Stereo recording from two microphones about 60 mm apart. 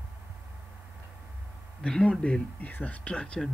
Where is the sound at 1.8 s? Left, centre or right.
Centre.